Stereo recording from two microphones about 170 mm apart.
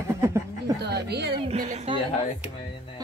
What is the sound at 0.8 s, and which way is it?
Speech, 75° right (ahead or behind).